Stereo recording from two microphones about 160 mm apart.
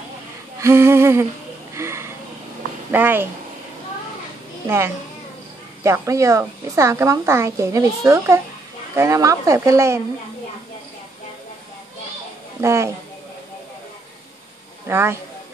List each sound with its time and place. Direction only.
0.6 s speech: 15° right (ahead or behind)
1.7 s a sound: 15° right (ahead or behind)
2.9 s speech: 10° right (ahead or behind)
4.6 s a woman's voice: 15° right (ahead or behind)
12.6 s speech: 15° right (ahead or behind)
14.9 s speech: 15° right (ahead or behind)